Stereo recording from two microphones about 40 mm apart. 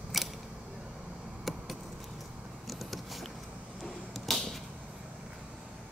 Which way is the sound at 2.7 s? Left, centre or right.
Centre.